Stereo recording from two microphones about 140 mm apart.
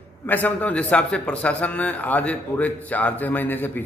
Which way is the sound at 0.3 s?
10° left (ahead or behind).